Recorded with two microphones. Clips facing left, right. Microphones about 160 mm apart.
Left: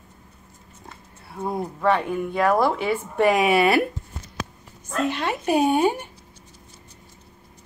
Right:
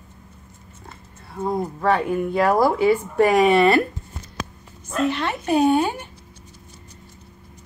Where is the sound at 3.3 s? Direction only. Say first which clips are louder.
Right 6 dB; 5° left (ahead or behind).